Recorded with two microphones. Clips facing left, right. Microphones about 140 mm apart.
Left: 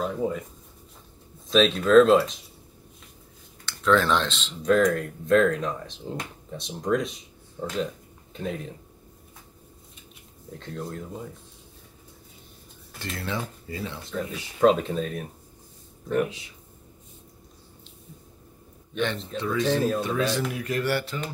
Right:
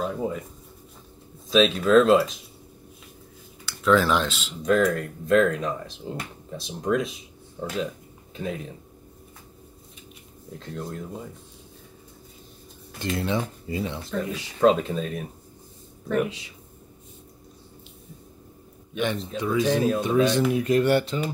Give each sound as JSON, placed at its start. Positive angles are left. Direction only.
{"t": 0.0, "sound": "speech", "side_deg": 0}
{"t": 1.5, "sound": "speech", "side_deg": 0}
{"t": 3.6, "sound": "speech", "side_deg": -5}
{"t": 10.5, "sound": "speech", "side_deg": 0}
{"t": 13.0, "sound": "speech", "side_deg": -20}
{"t": 14.6, "sound": "speech", "side_deg": 0}
{"t": 18.9, "sound": "speech", "side_deg": -10}